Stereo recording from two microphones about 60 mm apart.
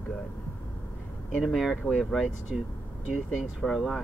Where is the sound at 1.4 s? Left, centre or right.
Centre.